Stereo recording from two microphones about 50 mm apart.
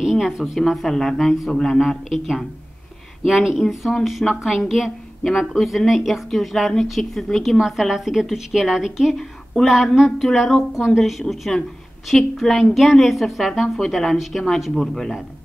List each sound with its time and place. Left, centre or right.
0.0 s a sound: centre
0.7 s a woman's voice: centre
1.8 s a woman's voice: centre
7.5 s a woman's voice: centre